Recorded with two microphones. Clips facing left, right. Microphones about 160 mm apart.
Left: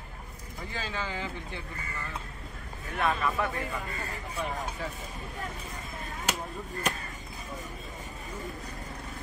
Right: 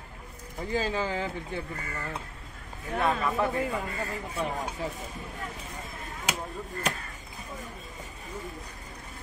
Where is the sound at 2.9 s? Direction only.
30° right (ahead or behind).